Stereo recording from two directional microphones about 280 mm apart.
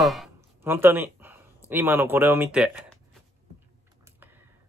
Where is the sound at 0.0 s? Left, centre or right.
Centre.